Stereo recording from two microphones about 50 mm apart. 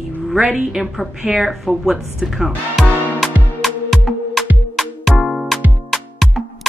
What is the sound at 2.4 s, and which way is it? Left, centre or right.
Music, centre.